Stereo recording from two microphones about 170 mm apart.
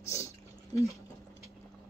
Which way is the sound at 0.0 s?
20° left (ahead or behind).